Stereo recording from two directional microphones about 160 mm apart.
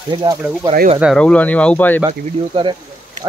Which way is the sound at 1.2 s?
10° left (ahead or behind).